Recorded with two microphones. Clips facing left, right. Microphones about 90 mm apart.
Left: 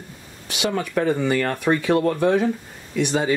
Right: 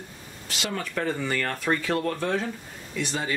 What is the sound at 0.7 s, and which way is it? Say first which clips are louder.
Speech: left 7 dB; 15° left (ahead or behind).